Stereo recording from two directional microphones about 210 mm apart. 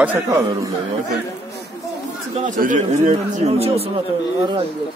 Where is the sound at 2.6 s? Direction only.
35° right (ahead or behind).